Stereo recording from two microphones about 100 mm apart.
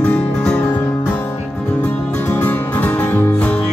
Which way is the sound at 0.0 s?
15° left (ahead or behind).